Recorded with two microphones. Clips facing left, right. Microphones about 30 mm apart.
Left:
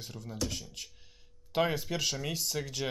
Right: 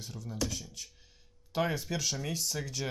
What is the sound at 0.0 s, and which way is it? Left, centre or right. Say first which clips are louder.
Speech: right 1 dB; left.